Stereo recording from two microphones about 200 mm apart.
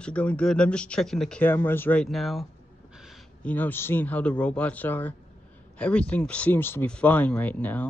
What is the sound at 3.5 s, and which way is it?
Speech, 10° left (ahead or behind).